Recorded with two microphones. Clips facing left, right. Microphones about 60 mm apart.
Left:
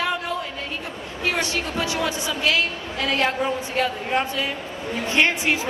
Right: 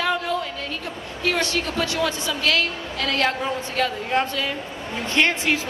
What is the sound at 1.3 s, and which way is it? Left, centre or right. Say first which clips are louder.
A woman's voice: right 1 dB; centre.